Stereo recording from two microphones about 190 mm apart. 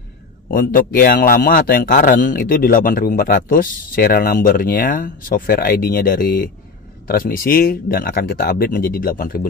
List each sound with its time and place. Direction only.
0.5 s a man's voice: 45° left (ahead or behind)